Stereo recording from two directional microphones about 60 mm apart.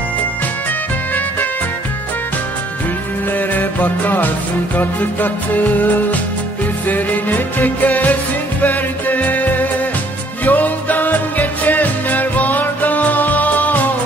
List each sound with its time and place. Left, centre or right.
3.3 s music: left